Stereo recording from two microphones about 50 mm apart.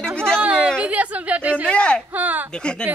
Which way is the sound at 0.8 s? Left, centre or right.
Right.